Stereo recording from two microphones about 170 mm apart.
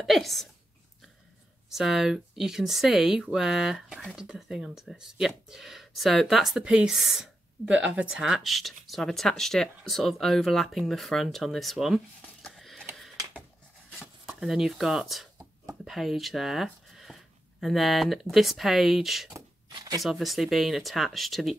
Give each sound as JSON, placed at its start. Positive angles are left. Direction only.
{"t": 0.0, "sound": "speech", "side_deg": 0}
{"t": 1.7, "sound": "speech", "side_deg": 0}
{"t": 13.9, "sound": "speech", "side_deg": -5}
{"t": 19.3, "sound": "a sound", "side_deg": -20}
{"t": 20.0, "sound": "speech", "side_deg": 0}